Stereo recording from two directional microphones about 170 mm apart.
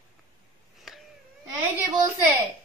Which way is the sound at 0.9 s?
Centre (ahead or behind).